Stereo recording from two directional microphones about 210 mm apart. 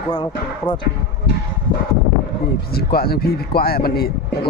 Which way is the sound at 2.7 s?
45° left (ahead or behind).